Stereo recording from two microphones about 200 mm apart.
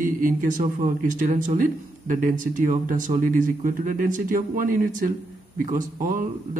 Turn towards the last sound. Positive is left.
turn(degrees=-40)  # may be behind; listen again after turning